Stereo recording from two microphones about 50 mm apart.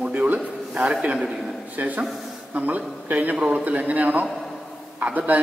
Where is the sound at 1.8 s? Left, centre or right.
Right.